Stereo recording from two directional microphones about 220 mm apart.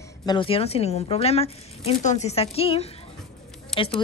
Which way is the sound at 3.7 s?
Centre (ahead or behind).